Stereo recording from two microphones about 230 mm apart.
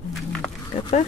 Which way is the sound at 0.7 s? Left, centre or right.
Left.